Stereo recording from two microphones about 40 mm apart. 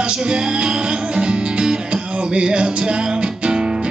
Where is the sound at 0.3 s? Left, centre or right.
Right.